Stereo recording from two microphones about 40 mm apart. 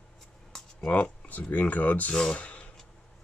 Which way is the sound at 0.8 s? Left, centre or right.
Left.